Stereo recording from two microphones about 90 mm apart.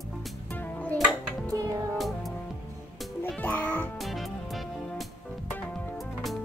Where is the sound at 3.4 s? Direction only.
20° left (ahead or behind).